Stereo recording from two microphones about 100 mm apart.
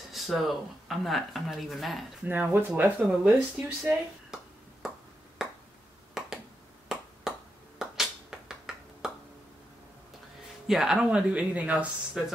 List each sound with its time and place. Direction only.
0.1 s speech: centre (ahead or behind)
2.2 s speech: 20° right (ahead or behind)
4.8 s finger snapping: 5° right (ahead or behind)
7.3 s finger snapping: 5° right (ahead or behind)
10.7 s speech: 5° right (ahead or behind)